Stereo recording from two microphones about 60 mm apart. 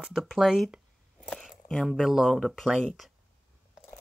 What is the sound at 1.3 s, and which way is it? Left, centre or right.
Speech, centre.